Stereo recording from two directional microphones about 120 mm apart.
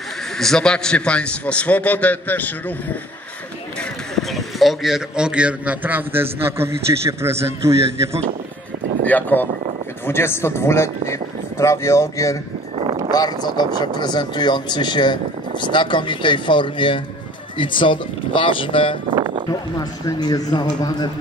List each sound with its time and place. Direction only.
0.4 s a man's voice: 5° left (ahead or behind)
4.1 s a man's voice: centre (ahead or behind); by 8.2 s 25° right (ahead or behind)
9.0 s a man's voice: 15° left (ahead or behind); by 18.9 s 45° left (ahead or behind)
19.0 s a sound: 40° right (ahead or behind)
19.8 s speech: 35° left (ahead or behind)